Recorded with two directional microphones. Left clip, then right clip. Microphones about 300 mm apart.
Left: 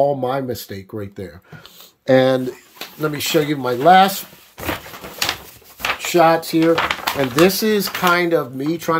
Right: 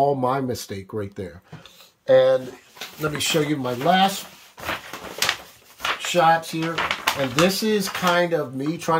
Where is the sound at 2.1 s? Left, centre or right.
Left.